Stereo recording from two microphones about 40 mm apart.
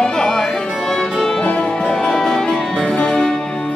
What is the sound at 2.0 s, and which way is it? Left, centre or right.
Music, centre.